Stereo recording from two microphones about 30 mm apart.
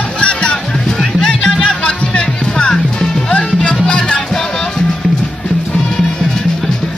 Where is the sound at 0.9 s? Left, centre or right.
Left.